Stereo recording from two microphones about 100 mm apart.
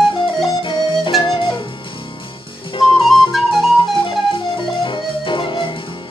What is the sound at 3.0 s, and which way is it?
Flute, centre (ahead or behind).